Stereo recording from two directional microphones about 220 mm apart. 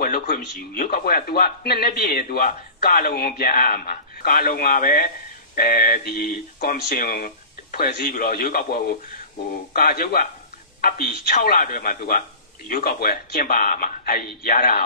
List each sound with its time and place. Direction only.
0.0 s a man's voice: 45° left (ahead or behind)